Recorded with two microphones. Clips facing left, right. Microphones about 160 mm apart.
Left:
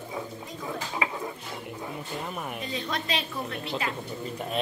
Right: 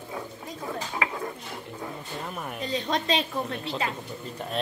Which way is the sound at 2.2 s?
Centre (ahead or behind).